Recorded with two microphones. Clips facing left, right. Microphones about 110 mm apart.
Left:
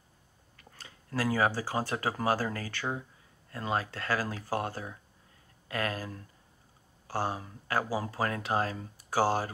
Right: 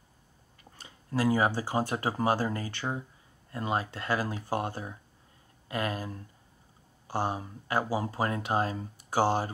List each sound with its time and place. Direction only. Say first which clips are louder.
0.7 s speech: right 3 dB; 20° right (ahead or behind)